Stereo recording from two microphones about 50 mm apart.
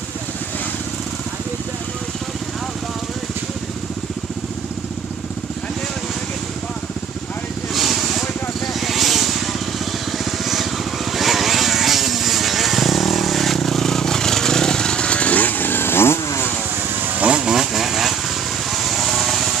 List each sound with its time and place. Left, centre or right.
7.7 s vehicle: centre; by 16.4 s left
17.0 s vehicle: right
17.3 s vehicle: centre
17.6 s vehicle: centre
18.7 s a sound: centre